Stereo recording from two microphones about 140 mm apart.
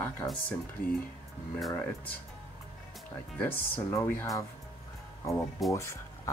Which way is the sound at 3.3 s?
15° left (ahead or behind).